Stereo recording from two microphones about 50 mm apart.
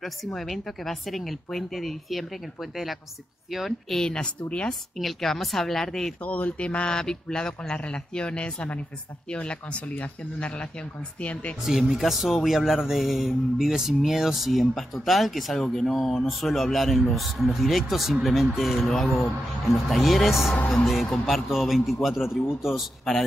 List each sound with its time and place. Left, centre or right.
0.3 s speech: centre
4.1 s speech: left
4.9 s speech: centre
6.2 s speech: left
11.9 s speech: centre